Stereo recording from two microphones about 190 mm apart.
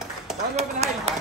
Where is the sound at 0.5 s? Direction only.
35° right (ahead or behind).